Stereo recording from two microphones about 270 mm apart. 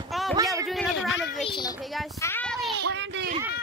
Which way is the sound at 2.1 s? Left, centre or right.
Centre.